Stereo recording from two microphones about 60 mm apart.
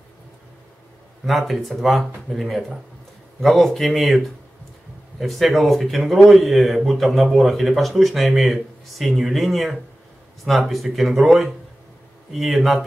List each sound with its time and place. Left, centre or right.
1.2 s speech: centre
5.2 s speech: centre